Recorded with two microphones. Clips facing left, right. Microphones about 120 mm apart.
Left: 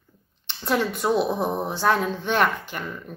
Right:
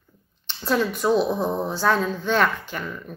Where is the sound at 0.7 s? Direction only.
20° left (ahead or behind).